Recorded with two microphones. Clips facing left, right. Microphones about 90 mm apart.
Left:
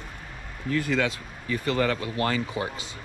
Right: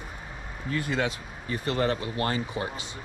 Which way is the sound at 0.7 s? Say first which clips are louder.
Left 3 dB; 25° right (ahead or behind).